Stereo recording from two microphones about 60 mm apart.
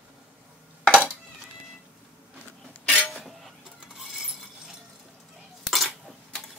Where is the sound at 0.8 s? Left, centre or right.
Centre.